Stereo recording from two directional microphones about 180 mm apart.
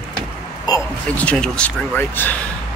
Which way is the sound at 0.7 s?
20° left (ahead or behind).